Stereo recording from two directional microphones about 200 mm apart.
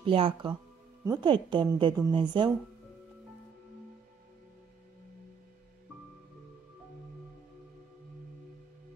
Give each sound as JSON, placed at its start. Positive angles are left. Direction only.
{"t": 0.0, "sound": "a woman's voice", "side_deg": -25}